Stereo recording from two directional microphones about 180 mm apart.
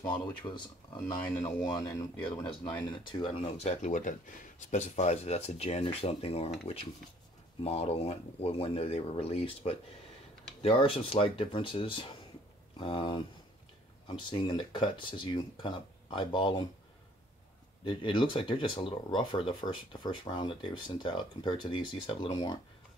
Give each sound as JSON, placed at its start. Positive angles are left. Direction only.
{"t": 0.0, "sound": "speech", "side_deg": 25}
{"t": 7.6, "sound": "speech", "side_deg": 35}
{"t": 17.8, "sound": "speech", "side_deg": 25}